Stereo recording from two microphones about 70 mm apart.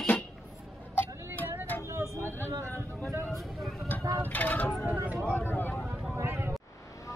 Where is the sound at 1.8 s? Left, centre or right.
Right.